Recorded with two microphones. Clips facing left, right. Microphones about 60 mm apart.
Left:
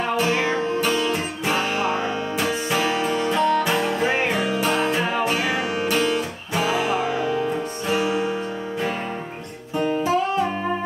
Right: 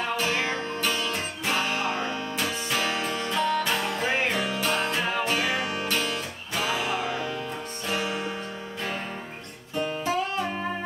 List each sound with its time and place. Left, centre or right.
0.1 s music: centre